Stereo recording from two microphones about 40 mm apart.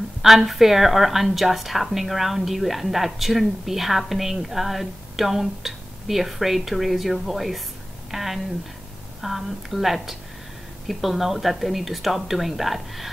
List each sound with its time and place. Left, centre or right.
0.2 s a woman's voice: centre